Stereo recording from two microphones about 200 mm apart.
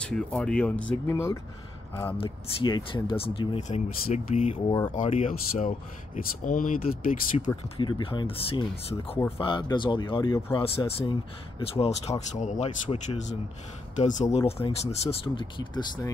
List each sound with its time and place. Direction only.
0.0 s speech: 5° left (ahead or behind)
2.1 s speech: 25° left (ahead or behind); by 7.4 s 40° left (ahead or behind)
7.4 s speech: 25° left (ahead or behind)